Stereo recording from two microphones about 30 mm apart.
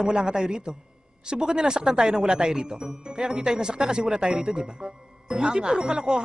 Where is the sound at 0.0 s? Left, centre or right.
Right.